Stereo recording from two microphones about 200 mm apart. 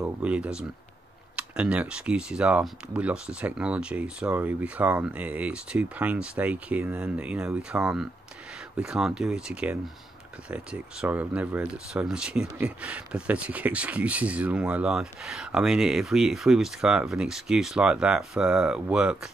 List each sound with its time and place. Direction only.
0.0 s speech: 5° right (ahead or behind)